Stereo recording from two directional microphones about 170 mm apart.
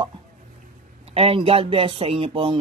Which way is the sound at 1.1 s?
35° right (ahead or behind).